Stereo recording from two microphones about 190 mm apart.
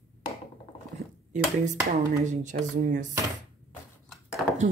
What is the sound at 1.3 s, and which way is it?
Speech, 40° right (ahead or behind).